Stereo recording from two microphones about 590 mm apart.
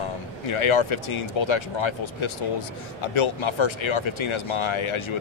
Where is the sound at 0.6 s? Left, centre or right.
Left.